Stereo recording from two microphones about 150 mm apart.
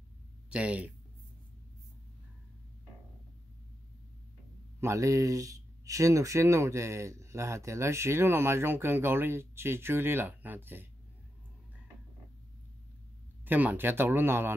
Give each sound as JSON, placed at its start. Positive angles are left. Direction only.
{"t": 0.5, "sound": "speech", "side_deg": -10}
{"t": 4.7, "sound": "speech", "side_deg": -20}
{"t": 13.5, "sound": "speech", "side_deg": -10}